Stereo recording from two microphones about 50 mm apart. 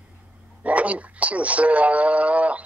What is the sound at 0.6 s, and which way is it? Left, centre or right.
Speech, right.